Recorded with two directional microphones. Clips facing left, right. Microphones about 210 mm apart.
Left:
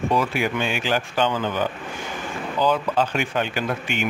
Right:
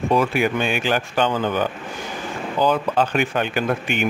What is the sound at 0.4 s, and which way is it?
Speech, 55° right (ahead or behind).